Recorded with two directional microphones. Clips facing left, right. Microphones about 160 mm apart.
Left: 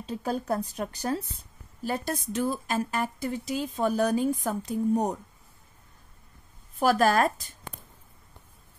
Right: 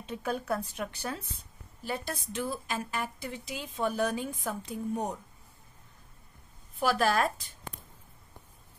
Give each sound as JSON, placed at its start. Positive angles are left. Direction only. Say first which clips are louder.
{"t": 0.0, "sound": "speech", "louder": "left 3 dB", "side_deg": 35}
{"t": 6.8, "sound": "speech", "louder": "left 5 dB", "side_deg": 45}